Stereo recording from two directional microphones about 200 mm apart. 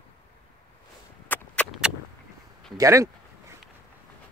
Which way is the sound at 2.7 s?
15° right (ahead or behind).